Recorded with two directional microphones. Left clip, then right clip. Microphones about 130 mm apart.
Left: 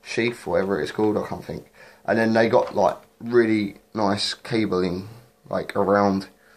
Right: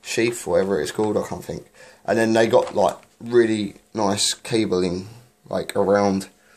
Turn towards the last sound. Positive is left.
turn(degrees=-15)  # may be behind; listen again after turning